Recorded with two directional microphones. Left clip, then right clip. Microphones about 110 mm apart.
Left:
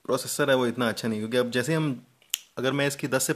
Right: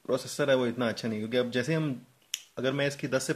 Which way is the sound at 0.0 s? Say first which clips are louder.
Left 3 dB; 35° left (ahead or behind).